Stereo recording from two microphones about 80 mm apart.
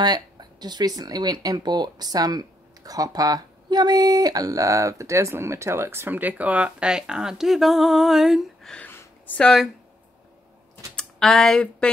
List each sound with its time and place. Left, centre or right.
0.0 s speech: right; by 8.5 s centre
8.8 s a sound: left
9.4 s speech: centre
11.0 s speech: centre